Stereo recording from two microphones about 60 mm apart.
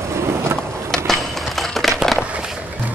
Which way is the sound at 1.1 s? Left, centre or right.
Centre.